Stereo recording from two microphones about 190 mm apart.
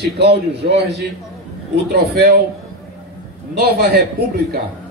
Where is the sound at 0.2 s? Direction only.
60° right (ahead or behind).